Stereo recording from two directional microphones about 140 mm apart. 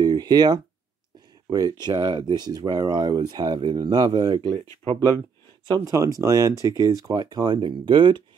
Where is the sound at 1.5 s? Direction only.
30° right (ahead or behind).